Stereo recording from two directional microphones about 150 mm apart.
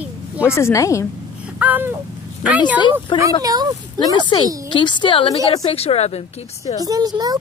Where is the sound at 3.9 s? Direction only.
25° left (ahead or behind); by 6.7 s 45° left (ahead or behind).